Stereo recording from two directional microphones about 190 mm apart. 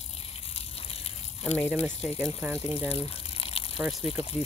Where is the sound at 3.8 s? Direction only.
Centre (ahead or behind).